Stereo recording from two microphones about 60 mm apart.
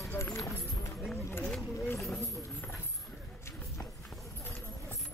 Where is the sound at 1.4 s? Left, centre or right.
Centre.